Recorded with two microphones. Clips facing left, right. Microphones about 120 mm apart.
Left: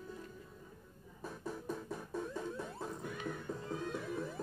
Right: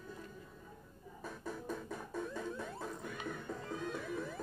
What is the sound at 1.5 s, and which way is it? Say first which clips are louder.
Music: left 1 dB; 10° left (ahead or behind).